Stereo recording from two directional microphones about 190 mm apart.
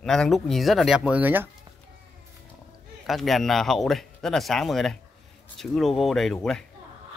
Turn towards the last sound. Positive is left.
turn(degrees=5)  # may be behind; listen again after turning